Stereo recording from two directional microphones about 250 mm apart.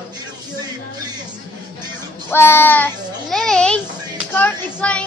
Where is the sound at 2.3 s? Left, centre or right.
Centre.